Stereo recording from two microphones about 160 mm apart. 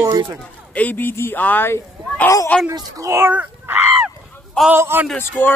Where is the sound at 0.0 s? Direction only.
20° right (ahead or behind).